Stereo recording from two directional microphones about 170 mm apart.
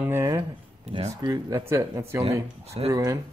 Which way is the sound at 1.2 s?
20° right (ahead or behind).